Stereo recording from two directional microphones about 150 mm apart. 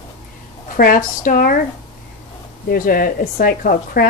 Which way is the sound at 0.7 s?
70° left (ahead or behind).